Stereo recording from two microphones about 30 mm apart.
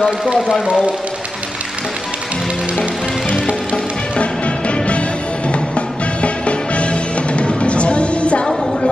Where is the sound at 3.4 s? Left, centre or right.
Left.